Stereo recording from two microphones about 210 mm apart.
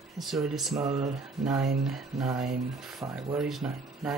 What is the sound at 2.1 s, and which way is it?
Speech, centre (ahead or behind).